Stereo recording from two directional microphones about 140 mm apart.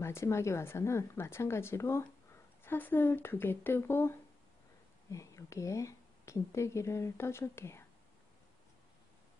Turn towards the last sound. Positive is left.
turn(degrees=20)  # may be behind; listen again after turning